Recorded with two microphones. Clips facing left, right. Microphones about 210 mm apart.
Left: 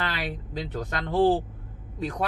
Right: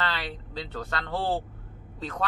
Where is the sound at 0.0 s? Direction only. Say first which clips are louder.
Left 1 dB; 15° left (ahead or behind).